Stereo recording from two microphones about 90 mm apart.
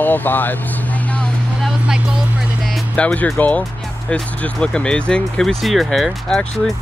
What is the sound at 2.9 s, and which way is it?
Speech, 15° left (ahead or behind).